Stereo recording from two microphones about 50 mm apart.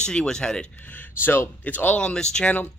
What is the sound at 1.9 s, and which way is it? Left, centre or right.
Speech, centre.